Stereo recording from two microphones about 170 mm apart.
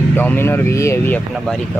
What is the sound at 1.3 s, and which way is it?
Speech, centre (ahead or behind).